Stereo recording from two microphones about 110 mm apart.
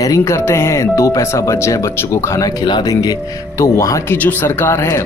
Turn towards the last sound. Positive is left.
turn(degrees=25)  # may be behind; listen again after turning